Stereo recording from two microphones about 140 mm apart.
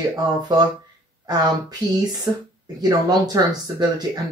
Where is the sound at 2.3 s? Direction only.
35° right (ahead or behind).